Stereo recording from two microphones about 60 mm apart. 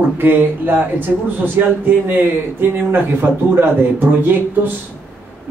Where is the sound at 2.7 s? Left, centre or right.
Right.